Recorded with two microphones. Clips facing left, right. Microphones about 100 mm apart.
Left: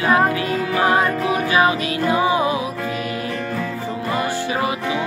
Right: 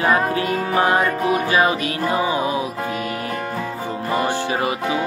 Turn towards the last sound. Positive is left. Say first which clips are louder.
# even
turn(degrees=-30)  # may be behind; listen again after turning